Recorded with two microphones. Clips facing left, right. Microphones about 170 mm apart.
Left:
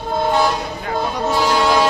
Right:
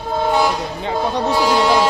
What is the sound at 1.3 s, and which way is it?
Vehicle, 5° right (ahead or behind).